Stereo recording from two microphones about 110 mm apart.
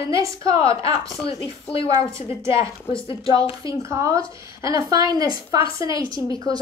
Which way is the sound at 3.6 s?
30° right (ahead or behind).